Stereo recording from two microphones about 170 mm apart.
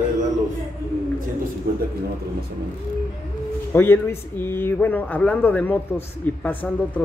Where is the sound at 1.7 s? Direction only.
60° right (ahead or behind).